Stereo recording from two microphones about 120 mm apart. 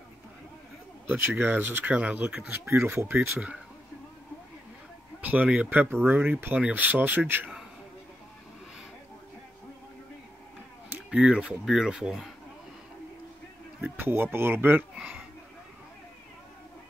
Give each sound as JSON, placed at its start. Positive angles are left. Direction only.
{"t": 1.0, "sound": "speech", "side_deg": -15}
{"t": 5.2, "sound": "speech", "side_deg": -10}
{"t": 11.1, "sound": "speech", "side_deg": -10}
{"t": 13.7, "sound": "speech", "side_deg": -20}